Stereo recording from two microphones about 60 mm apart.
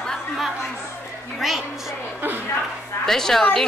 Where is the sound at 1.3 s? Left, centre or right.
Centre.